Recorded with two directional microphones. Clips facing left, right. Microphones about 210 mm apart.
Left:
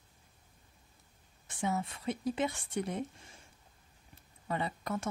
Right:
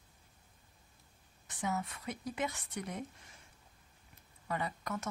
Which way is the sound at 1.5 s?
30° left (ahead or behind).